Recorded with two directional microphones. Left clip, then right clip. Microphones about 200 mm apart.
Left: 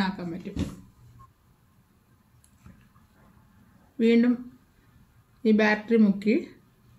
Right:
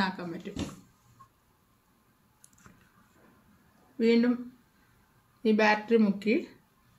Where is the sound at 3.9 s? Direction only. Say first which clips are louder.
Left 3 dB; centre (ahead or behind).